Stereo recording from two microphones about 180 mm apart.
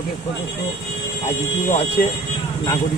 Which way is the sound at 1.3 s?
35° left (ahead or behind).